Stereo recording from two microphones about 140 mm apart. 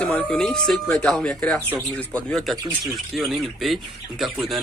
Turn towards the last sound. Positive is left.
turn(degrees=0)  # may be behind; listen again after turning